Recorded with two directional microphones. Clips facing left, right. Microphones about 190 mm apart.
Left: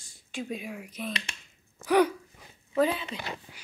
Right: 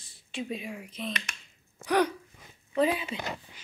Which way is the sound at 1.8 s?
10° left (ahead or behind).